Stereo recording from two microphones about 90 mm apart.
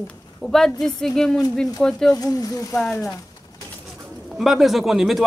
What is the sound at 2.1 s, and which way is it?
Speech, 40° left (ahead or behind).